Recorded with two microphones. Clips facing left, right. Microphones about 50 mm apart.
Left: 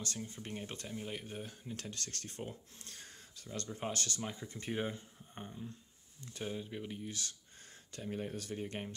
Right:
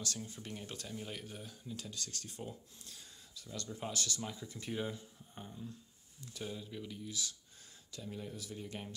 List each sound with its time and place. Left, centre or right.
0.0 s speech: left
0.9 s speech: centre
1.2 s speech: left
2.8 s a sound: left
3.7 s speech: left
8.5 s speech: left